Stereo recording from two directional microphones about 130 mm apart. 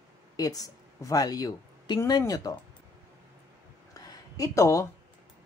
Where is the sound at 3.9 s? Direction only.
30° left (ahead or behind).